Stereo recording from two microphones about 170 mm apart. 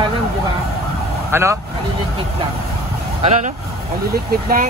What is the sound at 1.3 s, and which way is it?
Speech, 15° right (ahead or behind).